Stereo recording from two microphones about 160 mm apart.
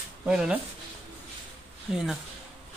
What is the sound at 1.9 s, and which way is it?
Speech, 5° right (ahead or behind).